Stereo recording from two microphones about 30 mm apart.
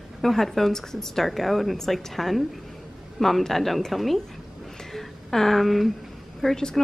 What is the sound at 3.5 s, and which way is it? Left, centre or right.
Speech, centre.